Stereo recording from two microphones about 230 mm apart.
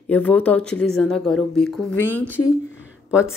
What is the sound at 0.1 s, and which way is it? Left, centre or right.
Speech, centre.